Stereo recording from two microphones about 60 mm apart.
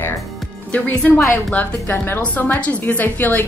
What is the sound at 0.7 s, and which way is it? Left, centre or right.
A woman's voice, left.